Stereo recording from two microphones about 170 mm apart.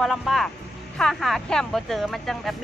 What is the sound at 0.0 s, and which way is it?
Speech, centre (ahead or behind).